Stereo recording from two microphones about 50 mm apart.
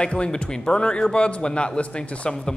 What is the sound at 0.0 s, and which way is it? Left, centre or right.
A man's voice, left.